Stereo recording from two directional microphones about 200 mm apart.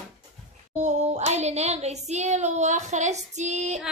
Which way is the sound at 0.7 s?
35° right (ahead or behind).